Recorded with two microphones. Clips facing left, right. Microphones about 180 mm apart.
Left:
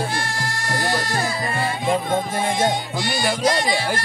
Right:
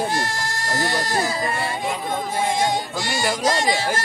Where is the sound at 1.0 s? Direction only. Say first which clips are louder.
Right 1 dB; 40° right (ahead or behind).